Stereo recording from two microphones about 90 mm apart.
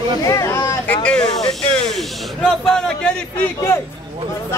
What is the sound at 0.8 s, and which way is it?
Snake, 15° left (ahead or behind).